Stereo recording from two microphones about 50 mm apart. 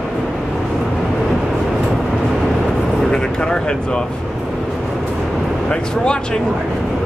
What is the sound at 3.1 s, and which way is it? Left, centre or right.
Speech, centre.